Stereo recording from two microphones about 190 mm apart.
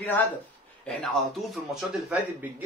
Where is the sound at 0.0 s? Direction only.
10° left (ahead or behind).